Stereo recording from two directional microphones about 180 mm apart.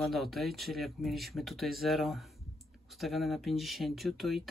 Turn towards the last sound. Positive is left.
turn(degrees=0)  # may be behind; listen again after turning